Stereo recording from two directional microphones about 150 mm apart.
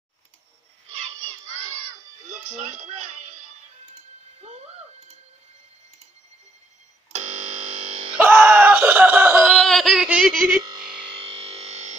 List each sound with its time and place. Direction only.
2.2 s music: 55° right (ahead or behind)
4.4 s a sound: 45° right (ahead or behind)
7.8 s music: 40° right (ahead or behind)
8.2 s screaming: 15° right (ahead or behind)
10.8 s music: 5° right (ahead or behind)
11.1 s music: 40° right (ahead or behind)